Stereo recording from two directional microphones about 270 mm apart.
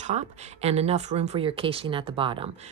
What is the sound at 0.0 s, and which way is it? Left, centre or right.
Speech, right.